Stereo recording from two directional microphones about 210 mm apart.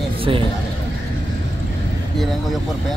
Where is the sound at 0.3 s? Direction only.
25° right (ahead or behind).